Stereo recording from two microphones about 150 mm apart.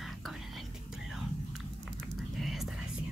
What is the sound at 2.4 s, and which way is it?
Whispering, centre (ahead or behind).